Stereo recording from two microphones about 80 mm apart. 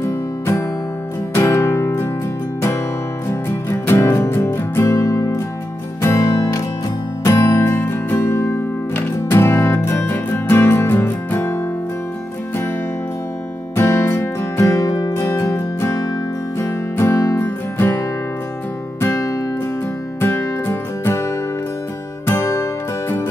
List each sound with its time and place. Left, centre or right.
0.0 s music: left
3.8 s music: left
7.5 s music: left
13.7 s music: left
15.1 s music: left